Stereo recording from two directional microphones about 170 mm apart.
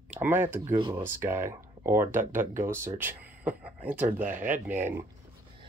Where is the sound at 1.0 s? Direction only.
15° right (ahead or behind).